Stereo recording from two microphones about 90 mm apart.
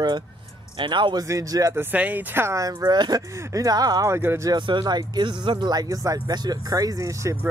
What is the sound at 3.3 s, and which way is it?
Speech, 35° right (ahead or behind).